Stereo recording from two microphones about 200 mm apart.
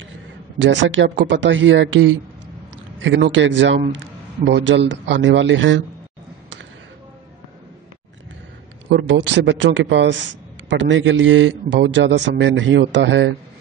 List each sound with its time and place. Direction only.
0.6 s a man's voice: 65° right (ahead or behind)
8.9 s a man's voice: 60° right (ahead or behind)